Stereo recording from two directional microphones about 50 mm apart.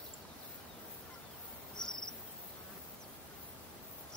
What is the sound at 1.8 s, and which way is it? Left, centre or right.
Cricket, centre.